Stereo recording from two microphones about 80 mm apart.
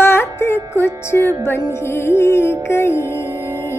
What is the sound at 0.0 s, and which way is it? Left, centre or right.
Music, left.